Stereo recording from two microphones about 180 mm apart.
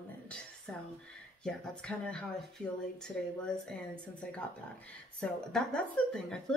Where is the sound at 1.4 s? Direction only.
5° left (ahead or behind).